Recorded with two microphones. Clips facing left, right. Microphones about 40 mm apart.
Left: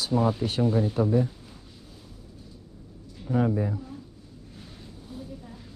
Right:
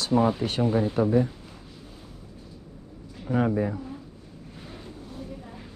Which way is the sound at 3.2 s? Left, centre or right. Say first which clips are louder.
Right 1 dB; right.